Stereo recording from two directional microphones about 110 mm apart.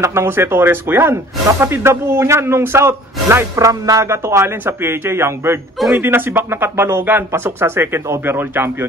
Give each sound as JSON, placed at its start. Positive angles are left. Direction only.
{"t": 0.0, "sound": "speech", "side_deg": -25}